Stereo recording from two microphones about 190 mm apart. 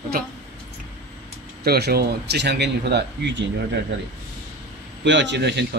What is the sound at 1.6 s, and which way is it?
Speech, 55° right (ahead or behind).